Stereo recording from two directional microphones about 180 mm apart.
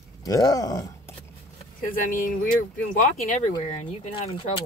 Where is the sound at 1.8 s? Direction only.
50° left (ahead or behind); by 4.6 s 35° left (ahead or behind).